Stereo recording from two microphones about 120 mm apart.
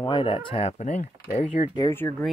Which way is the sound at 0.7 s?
70° left (ahead or behind).